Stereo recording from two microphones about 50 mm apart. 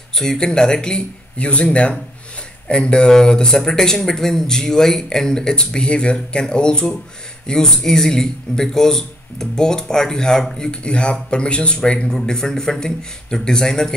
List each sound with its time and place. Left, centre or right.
0.1 s speech: centre